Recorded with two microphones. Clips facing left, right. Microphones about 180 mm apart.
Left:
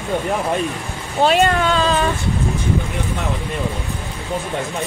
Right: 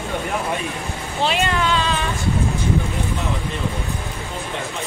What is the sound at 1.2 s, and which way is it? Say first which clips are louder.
Speech: left 6 dB; 45° left (ahead or behind).